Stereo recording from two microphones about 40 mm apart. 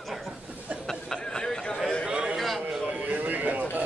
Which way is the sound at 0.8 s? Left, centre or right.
Centre.